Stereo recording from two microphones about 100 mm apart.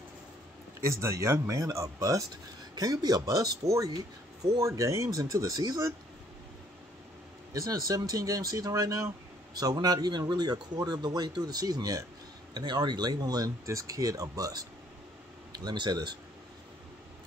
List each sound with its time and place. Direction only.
0.7 s speech: 30° right (ahead or behind)
7.5 s speech: 35° right (ahead or behind)